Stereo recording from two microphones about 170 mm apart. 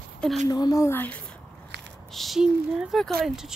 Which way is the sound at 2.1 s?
Centre (ahead or behind).